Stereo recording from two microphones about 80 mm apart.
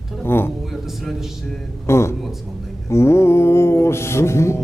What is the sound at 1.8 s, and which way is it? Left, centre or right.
Speech, left.